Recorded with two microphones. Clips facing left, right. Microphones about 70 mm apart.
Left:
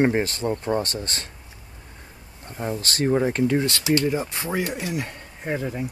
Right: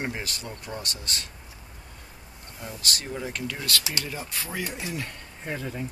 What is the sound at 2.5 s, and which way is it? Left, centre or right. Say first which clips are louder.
Speech: left 8 dB; left.